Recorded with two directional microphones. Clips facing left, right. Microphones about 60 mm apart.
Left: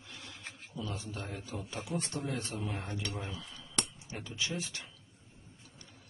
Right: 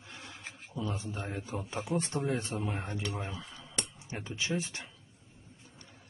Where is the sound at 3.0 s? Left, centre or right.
Centre.